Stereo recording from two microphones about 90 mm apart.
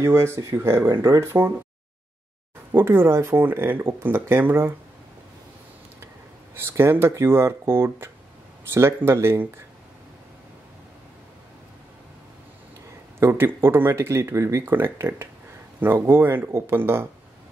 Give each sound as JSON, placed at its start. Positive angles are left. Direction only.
{"t": 0.0, "sound": "speech", "side_deg": -30}
{"t": 2.7, "sound": "speech", "side_deg": -25}
{"t": 6.8, "sound": "speech", "side_deg": -25}
{"t": 13.2, "sound": "speech", "side_deg": -25}